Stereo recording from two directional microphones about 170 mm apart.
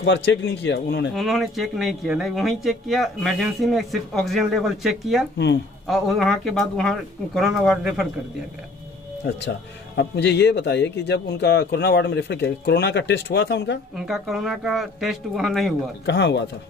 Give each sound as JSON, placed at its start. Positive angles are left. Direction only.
{"t": 0.0, "sound": "speech", "side_deg": 90}
{"t": 1.1, "sound": "speech", "side_deg": 0}
{"t": 9.2, "sound": "speech", "side_deg": 85}
{"t": 13.9, "sound": "speech", "side_deg": -5}
{"t": 16.1, "sound": "speech", "side_deg": 90}